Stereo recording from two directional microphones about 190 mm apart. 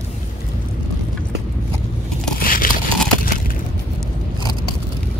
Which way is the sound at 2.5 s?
45° left (ahead or behind).